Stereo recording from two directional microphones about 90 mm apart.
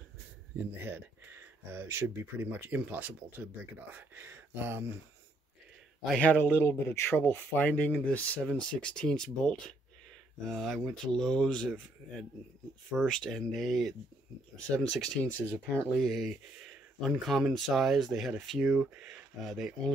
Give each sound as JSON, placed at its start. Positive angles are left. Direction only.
{"t": 0.7, "sound": "speech", "side_deg": -25}
{"t": 6.2, "sound": "speech", "side_deg": 15}
{"t": 18.6, "sound": "speech", "side_deg": -10}